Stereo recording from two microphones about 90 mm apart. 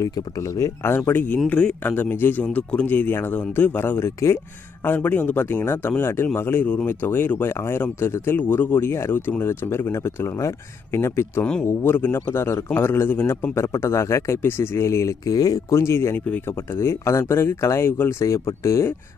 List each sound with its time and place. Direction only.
0.0 s speech: 40° left (ahead or behind)
15.7 s speech: 30° left (ahead or behind)